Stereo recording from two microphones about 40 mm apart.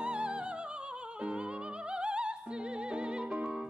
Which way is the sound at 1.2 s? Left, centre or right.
Right.